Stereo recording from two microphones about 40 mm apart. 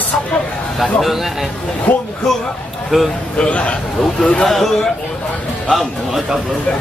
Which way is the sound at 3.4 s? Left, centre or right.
Left.